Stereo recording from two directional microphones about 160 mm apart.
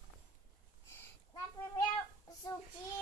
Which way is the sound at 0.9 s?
25° left (ahead or behind).